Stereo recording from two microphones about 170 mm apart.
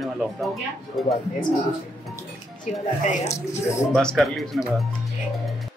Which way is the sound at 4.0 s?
5° left (ahead or behind).